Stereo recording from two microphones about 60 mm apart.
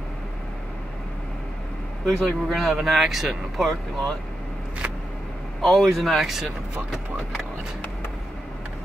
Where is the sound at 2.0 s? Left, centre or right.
Centre.